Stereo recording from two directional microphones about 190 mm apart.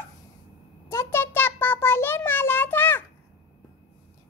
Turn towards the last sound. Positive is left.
turn(degrees=10)  # may be behind; listen again after turning